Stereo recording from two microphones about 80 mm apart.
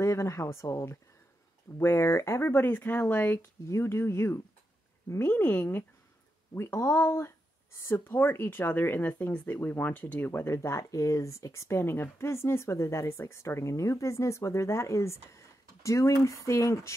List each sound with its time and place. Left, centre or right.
0.0 s speech: left
3.6 s speech: left
5.3 s speech: left